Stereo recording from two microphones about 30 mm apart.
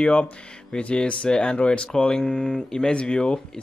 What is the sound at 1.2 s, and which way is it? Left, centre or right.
Speech, left.